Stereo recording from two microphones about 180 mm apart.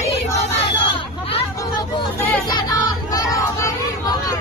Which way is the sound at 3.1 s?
20° left (ahead or behind).